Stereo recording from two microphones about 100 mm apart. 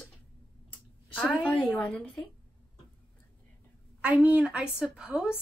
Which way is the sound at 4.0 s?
10° right (ahead or behind).